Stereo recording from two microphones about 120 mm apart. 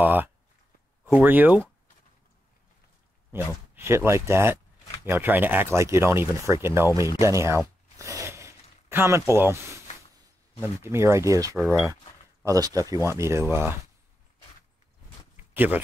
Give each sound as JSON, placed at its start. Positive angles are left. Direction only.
{"t": 0.0, "sound": "speech", "side_deg": -15}
{"t": 3.3, "sound": "speech", "side_deg": -20}
{"t": 7.2, "sound": "a sound", "side_deg": -25}
{"t": 9.3, "sound": "speech", "side_deg": -20}
{"t": 10.6, "sound": "speech", "side_deg": -20}
{"t": 11.5, "sound": "speech", "side_deg": 0}
{"t": 12.4, "sound": "speech", "side_deg": -30}
{"t": 15.3, "sound": "a sound", "side_deg": -15}